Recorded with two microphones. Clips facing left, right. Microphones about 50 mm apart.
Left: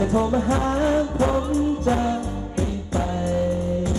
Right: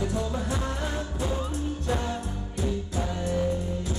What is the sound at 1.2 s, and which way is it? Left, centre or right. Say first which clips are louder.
Music: left 10 dB; left.